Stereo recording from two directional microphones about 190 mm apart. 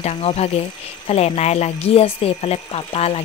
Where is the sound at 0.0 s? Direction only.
35° left (ahead or behind).